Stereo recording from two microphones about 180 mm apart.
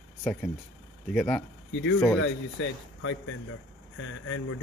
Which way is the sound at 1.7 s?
80° left.